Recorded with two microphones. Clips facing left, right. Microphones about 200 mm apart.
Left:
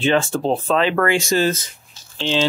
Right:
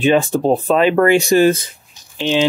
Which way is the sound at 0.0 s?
15° right (ahead or behind).